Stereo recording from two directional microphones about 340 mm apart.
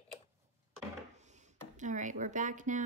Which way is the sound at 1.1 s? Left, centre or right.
Right.